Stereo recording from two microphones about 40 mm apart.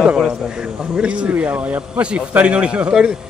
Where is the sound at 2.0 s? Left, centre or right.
Right.